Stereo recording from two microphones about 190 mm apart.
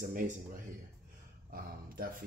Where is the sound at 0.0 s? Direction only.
45° right (ahead or behind).